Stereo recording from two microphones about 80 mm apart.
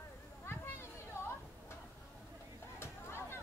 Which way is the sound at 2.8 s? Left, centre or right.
Left.